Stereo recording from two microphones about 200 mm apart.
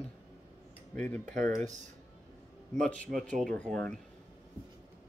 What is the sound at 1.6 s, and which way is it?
Speech, 35° right (ahead or behind).